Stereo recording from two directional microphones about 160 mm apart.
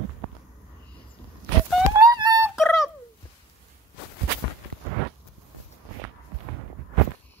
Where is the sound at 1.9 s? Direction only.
25° right (ahead or behind).